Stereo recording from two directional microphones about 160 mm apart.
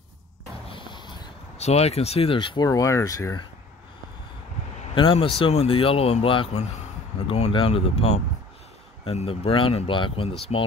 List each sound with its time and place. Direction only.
0.7 s a sound: 30° left (ahead or behind)
1.6 s speech: 40° left (ahead or behind); by 3.4 s 20° left (ahead or behind)
4.9 s speech: 35° left (ahead or behind)